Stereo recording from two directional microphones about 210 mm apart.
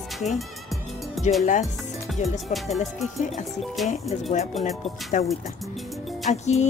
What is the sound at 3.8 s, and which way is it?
Speech, centre (ahead or behind).